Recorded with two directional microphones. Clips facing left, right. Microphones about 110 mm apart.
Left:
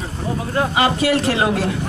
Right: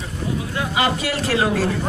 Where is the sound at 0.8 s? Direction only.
25° left (ahead or behind).